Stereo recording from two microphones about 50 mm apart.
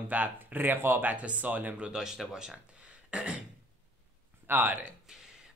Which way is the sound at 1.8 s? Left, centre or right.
Centre.